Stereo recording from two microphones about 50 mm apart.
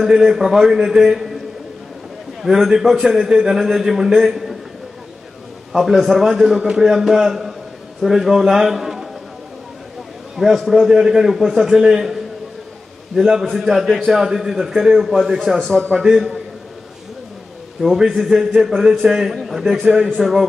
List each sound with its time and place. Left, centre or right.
0.0 s a man's voice: centre
2.4 s a man's voice: centre
5.7 s a man's voice: centre
6.6 s a man's voice: centre
6.9 s a man's voice: centre
10.3 s a man's voice: centre
13.5 s a man's voice: centre
15.9 s a man's voice: centre
17.8 s a man's voice: centre